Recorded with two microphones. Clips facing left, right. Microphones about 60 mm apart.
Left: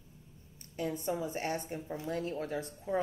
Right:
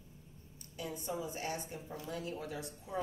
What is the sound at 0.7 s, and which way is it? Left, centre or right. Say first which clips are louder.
A woman's voice: left 6 dB; left.